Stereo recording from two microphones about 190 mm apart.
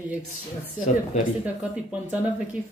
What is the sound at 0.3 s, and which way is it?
Speech, 45° left (ahead or behind).